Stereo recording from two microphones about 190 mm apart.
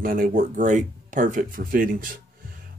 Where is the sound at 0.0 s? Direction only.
50° right (ahead or behind).